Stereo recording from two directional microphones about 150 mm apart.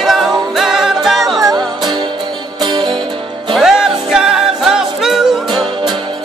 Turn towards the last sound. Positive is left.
turn(degrees=-5)  # may be behind; listen again after turning